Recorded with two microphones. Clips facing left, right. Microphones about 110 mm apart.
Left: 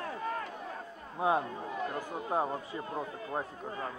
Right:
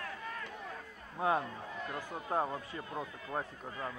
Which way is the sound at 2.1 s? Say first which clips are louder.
Even; 15° left (ahead or behind).